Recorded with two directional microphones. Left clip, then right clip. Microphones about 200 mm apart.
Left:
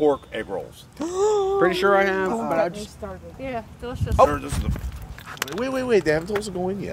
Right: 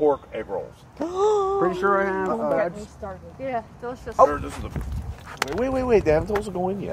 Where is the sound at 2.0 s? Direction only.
10° left (ahead or behind).